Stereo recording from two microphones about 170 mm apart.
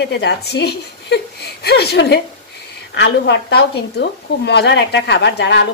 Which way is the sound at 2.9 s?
90° left.